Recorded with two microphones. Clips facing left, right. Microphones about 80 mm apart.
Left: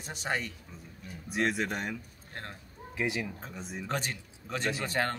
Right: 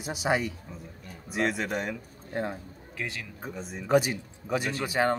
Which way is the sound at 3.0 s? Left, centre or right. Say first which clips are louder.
Left 4 dB; centre.